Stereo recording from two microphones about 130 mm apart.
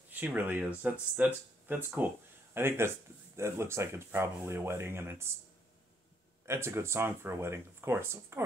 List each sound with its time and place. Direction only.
0.1 s speech: 15° right (ahead or behind)
6.4 s speech: 20° right (ahead or behind)